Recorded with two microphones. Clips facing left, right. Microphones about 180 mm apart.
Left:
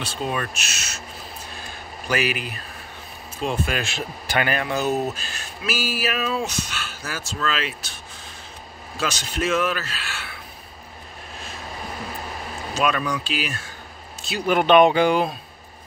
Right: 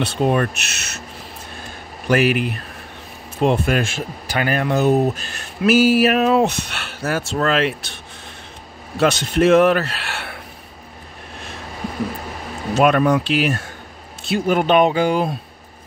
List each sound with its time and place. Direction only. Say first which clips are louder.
0.0 s speech: right 9 dB; 60° right (ahead or behind)
2.0 s speech: right 8 dB; 55° right (ahead or behind)
12.7 s speech: right 9 dB; 55° right (ahead or behind)
14.3 s speech: right 1 dB; 45° right (ahead or behind)